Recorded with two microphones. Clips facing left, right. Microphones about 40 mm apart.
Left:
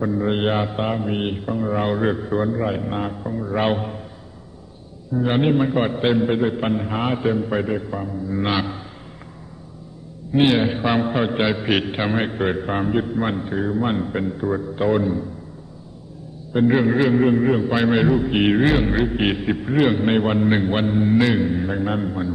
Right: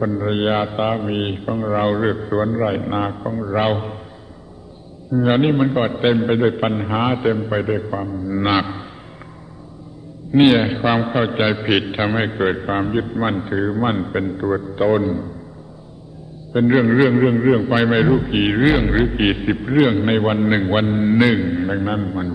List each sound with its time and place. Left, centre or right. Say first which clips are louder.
0.0 s a man's voice: right 1 dB; centre
5.1 s a man's voice: right 3 dB; centre
10.3 s a man's voice: right 4 dB; centre
16.5 s a man's voice: right 3 dB; centre